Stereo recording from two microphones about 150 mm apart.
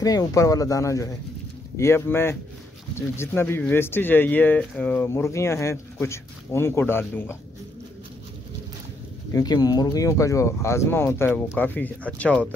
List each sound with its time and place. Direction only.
0.0 s speech: 25° left (ahead or behind)
9.3 s speech: 25° left (ahead or behind); by 12.4 s 10° left (ahead or behind)